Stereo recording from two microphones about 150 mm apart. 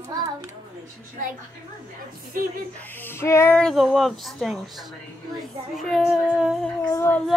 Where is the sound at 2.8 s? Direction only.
15° left (ahead or behind).